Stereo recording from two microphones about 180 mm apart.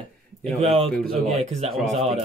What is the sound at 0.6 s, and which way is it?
Speech, 35° right (ahead or behind).